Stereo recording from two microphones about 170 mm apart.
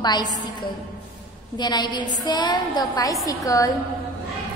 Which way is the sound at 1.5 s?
25° left (ahead or behind).